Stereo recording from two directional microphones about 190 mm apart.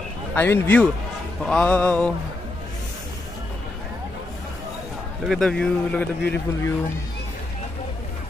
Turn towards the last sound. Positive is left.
turn(degrees=5)  # may be behind; listen again after turning